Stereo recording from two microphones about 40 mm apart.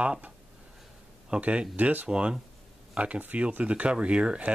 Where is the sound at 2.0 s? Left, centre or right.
Right.